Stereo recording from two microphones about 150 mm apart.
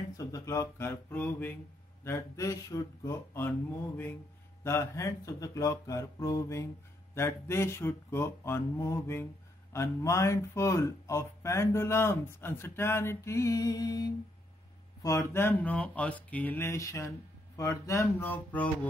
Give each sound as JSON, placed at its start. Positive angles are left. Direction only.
{"t": 0.2, "sound": "speech", "side_deg": 20}